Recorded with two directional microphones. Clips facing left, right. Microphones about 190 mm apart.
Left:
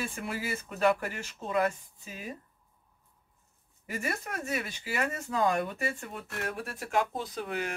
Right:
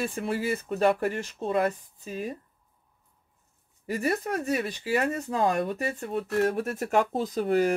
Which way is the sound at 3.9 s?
40° right (ahead or behind).